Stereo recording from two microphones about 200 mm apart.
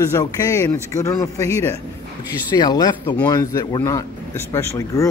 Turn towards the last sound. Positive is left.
turn(degrees=15)  # may be behind; listen again after turning